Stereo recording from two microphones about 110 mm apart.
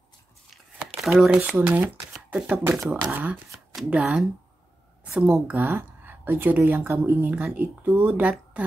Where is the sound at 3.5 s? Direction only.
5° right (ahead or behind).